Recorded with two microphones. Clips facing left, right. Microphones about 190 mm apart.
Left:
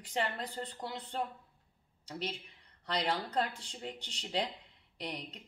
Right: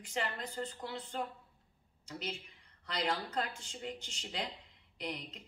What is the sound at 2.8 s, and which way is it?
Speech, 35° left (ahead or behind).